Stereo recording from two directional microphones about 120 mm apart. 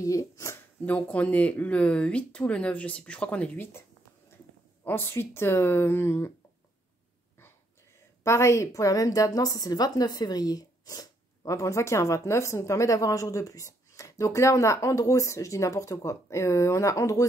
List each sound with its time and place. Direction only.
0.0 s speech: 25° left (ahead or behind)
0.8 s speech: 10° left (ahead or behind)
4.8 s a woman's voice: 20° left (ahead or behind)
8.2 s a woman's voice: 25° left (ahead or behind)